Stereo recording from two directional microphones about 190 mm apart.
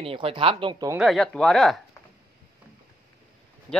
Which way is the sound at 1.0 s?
Centre (ahead or behind).